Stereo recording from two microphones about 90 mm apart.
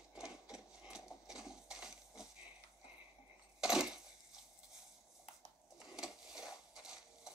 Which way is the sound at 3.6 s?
5° right (ahead or behind).